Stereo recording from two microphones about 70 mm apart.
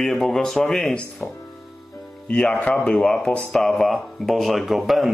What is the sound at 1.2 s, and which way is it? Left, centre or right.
Speech, left.